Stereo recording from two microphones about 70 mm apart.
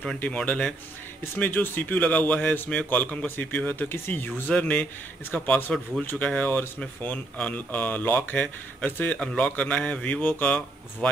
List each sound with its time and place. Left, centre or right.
0.4 s speech: centre
1.3 s speech: left
9.2 s speech: centre